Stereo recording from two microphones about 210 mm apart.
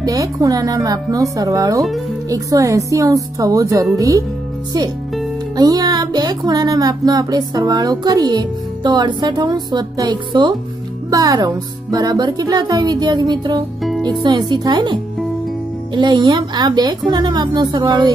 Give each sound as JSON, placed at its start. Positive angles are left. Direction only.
{"t": 0.0, "sound": "speech", "side_deg": -15}
{"t": 5.6, "sound": "speech", "side_deg": -20}